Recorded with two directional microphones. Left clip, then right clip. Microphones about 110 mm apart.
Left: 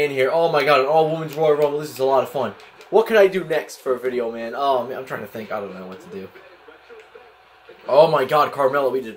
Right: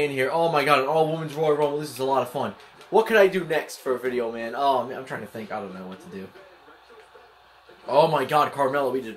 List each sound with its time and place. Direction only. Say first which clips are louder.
0.0 s speech: left 5 dB; 15° right (ahead or behind)
5.0 s speech: left 4 dB; 5° right (ahead or behind)
7.8 s speech: left 5 dB; 10° right (ahead or behind)